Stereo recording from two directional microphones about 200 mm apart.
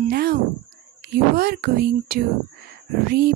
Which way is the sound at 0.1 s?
50° right (ahead or behind).